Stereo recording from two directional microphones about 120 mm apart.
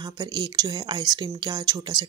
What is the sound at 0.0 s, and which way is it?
Speech, 40° right (ahead or behind).